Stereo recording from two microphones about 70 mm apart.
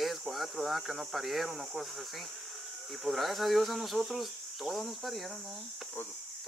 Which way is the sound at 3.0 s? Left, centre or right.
Centre.